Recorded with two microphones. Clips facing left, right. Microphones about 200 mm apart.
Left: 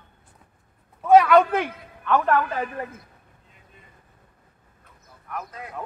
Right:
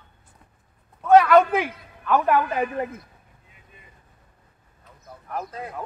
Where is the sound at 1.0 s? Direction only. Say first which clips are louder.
Even; centre (ahead or behind); by 2.9 s 15° right (ahead or behind).